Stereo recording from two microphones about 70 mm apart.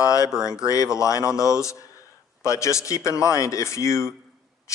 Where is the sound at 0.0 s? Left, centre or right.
Left.